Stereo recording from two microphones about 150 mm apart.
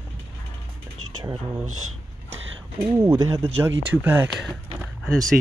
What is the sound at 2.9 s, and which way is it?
Speech, 20° right (ahead or behind).